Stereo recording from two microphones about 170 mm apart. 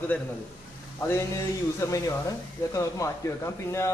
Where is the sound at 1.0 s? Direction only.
15° left (ahead or behind).